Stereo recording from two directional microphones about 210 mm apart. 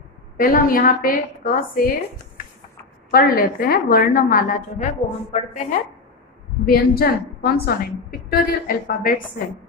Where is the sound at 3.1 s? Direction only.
45° left (ahead or behind).